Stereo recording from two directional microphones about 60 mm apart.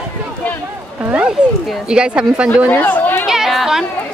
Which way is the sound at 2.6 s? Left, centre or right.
Left.